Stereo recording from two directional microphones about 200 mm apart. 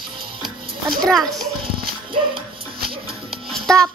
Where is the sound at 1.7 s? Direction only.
25° right (ahead or behind).